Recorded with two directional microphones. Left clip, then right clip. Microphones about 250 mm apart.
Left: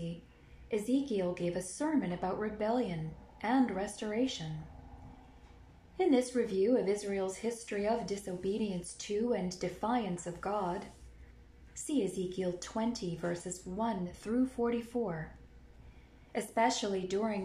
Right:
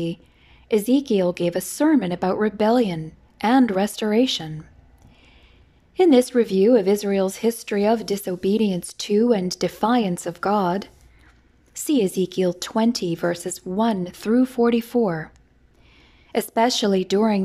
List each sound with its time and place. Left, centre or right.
0.7 s a woman's voice: right
5.9 s a woman's voice: right
16.3 s a woman's voice: right